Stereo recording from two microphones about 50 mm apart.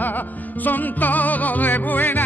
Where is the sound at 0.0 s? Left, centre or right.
Left.